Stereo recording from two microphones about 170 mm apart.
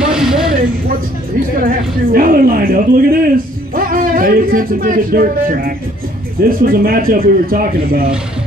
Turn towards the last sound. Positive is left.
turn(degrees=-55)  # may be behind; listen again after turning